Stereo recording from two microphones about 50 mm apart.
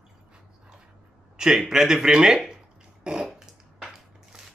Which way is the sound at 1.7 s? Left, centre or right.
Centre.